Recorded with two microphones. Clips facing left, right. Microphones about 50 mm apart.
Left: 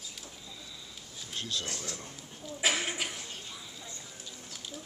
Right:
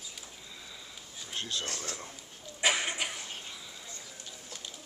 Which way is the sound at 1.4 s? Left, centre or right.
Centre.